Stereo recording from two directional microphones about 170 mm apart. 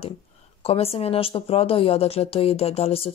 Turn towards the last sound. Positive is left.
turn(degrees=35)  # may be behind; listen again after turning